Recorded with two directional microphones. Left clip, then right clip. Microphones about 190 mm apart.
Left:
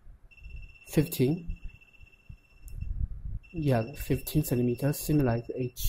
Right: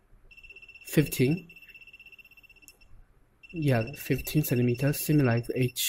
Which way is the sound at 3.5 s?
Centre (ahead or behind).